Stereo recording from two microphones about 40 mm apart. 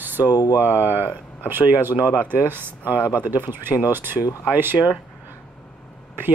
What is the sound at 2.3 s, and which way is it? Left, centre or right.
Speech, right.